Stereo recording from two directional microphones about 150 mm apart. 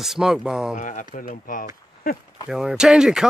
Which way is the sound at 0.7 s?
60° left (ahead or behind).